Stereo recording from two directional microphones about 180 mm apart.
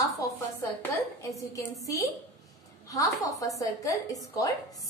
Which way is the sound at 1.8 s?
20° left (ahead or behind).